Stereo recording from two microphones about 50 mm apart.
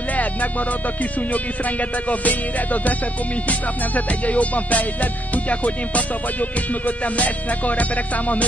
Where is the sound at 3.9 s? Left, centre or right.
Left.